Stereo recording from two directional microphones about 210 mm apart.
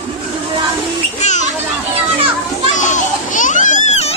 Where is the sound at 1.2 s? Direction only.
35° left (ahead or behind).